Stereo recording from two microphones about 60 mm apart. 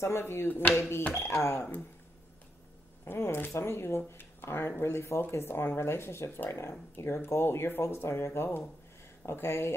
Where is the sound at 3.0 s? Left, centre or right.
Left.